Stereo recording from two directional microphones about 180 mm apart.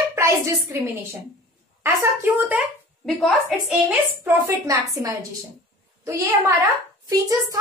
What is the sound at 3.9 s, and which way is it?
A child's voice, 15° right (ahead or behind).